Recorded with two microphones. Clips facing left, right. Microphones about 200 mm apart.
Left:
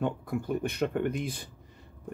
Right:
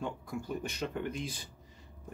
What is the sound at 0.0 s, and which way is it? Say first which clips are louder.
Speech: left 7 dB; 60° left (ahead or behind).